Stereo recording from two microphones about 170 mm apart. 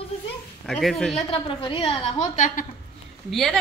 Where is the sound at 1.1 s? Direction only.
30° left (ahead or behind).